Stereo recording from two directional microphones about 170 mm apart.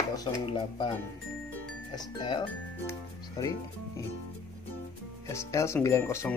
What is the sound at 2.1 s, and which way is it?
Speech, 25° left (ahead or behind).